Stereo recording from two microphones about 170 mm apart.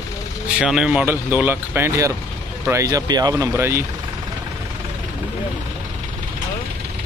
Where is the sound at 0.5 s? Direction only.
5° right (ahead or behind).